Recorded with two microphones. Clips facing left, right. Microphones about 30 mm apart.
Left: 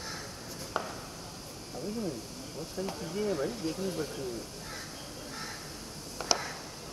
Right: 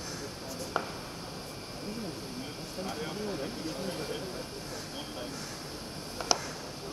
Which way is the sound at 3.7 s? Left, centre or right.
Right.